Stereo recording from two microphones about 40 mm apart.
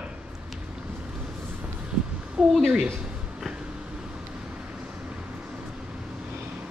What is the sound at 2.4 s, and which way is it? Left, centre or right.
Speech, centre.